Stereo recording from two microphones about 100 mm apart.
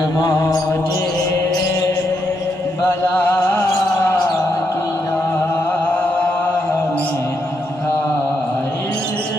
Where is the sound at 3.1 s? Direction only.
25° left (ahead or behind).